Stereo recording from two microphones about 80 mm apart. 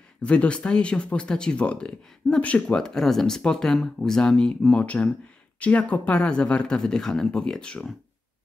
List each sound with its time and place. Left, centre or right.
0.2 s speech: centre